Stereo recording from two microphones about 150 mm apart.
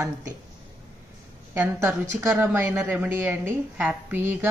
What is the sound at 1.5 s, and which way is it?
A woman's voice, 15° right (ahead or behind).